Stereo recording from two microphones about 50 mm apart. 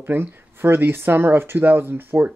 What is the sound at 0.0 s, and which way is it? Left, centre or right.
Speech, right.